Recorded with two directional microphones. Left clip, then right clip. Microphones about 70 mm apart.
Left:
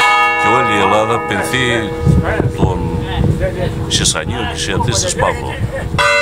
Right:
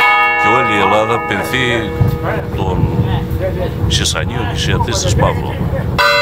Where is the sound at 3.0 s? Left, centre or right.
Left.